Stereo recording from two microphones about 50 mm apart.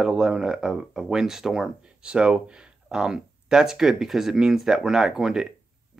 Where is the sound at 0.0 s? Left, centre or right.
Centre.